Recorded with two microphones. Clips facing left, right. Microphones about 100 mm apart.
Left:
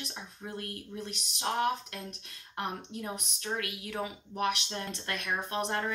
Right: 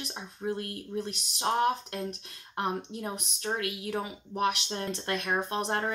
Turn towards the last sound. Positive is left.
turn(degrees=-30)  # may be behind; listen again after turning